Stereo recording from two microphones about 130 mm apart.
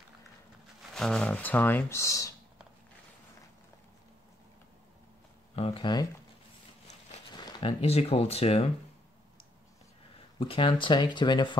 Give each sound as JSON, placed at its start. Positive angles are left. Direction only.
{"t": 0.9, "sound": "speech", "side_deg": 5}
{"t": 5.6, "sound": "speech", "side_deg": 45}
{"t": 7.8, "sound": "speech", "side_deg": 50}
{"t": 10.4, "sound": "speech", "side_deg": 45}